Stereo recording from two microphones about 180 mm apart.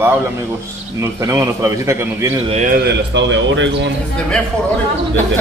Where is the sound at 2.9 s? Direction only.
90° right.